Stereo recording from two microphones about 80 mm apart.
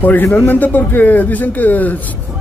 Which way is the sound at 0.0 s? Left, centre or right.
Left.